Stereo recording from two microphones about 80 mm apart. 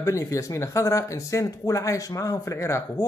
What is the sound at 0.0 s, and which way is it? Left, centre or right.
Speech, left.